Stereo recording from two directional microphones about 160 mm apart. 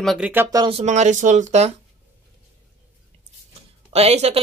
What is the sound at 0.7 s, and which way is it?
Speech, 45° right (ahead or behind).